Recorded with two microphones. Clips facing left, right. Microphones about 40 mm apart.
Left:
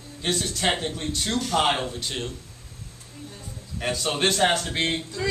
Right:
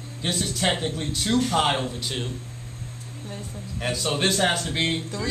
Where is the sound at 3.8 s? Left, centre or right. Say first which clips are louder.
Even; centre.